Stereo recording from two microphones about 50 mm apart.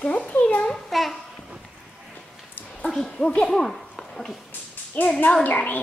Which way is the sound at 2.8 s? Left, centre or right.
Centre.